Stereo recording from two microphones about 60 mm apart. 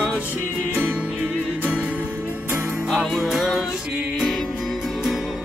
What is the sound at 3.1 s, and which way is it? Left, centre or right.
Music, centre.